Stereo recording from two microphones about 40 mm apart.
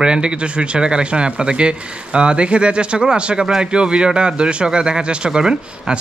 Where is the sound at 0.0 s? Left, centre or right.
Right.